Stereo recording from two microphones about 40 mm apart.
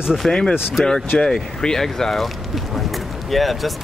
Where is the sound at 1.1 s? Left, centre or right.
Centre.